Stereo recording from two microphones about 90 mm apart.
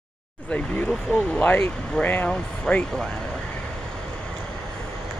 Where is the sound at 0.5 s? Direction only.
15° left (ahead or behind).